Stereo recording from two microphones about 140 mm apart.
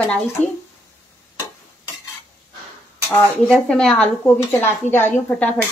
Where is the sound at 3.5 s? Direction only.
5° left (ahead or behind).